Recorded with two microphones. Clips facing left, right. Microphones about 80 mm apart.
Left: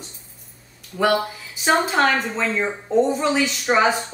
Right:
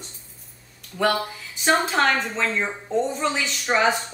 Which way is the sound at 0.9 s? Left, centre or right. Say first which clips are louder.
Left 2 dB; left.